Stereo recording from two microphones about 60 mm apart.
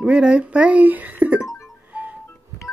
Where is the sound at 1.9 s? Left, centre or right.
Right.